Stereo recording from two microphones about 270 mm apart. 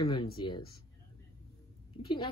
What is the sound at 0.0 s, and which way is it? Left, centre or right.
Speech, centre.